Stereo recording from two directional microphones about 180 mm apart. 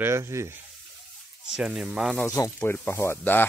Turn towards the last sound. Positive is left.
turn(degrees=10)  # may be behind; listen again after turning